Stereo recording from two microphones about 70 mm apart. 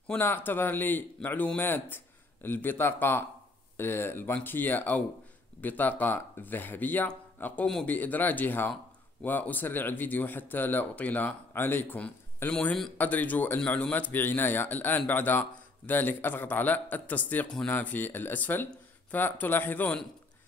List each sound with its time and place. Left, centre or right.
0.1 s speech: left